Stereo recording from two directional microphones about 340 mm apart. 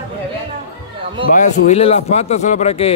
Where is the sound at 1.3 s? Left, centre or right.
Left.